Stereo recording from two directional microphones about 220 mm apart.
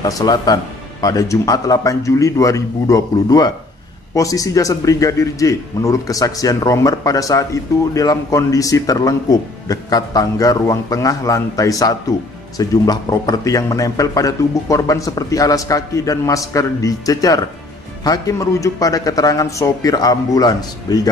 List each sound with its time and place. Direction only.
0.0 s a man's voice: 15° left (ahead or behind)